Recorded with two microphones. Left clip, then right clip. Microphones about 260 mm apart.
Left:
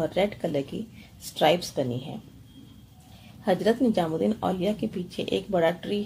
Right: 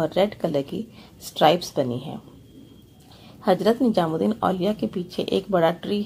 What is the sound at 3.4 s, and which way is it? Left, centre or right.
Speech, centre.